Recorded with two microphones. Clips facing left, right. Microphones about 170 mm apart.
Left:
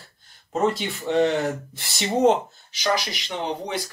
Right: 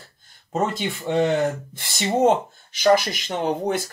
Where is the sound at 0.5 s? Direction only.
45° right (ahead or behind).